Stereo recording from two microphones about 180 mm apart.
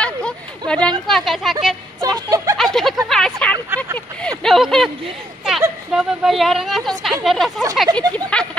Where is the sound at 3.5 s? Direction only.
15° right (ahead or behind).